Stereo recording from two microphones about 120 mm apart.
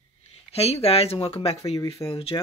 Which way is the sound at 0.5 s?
60° left (ahead or behind).